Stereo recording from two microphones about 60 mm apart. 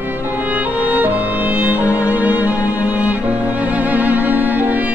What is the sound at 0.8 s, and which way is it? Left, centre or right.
Music, right.